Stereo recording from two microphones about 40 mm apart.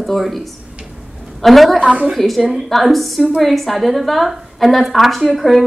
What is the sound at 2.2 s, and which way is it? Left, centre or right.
A woman's voice, centre.